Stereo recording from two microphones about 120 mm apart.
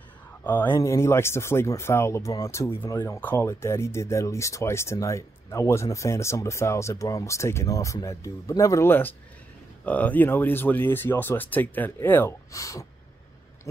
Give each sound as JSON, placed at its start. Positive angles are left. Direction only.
{"t": 0.4, "sound": "speech", "side_deg": 15}
{"t": 0.7, "sound": "speech", "side_deg": 25}